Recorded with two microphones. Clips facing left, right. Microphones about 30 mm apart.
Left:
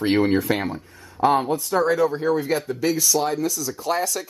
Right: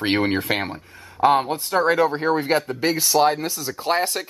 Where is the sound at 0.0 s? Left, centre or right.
Right.